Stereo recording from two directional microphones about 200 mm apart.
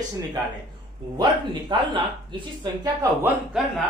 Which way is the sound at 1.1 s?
20° right (ahead or behind).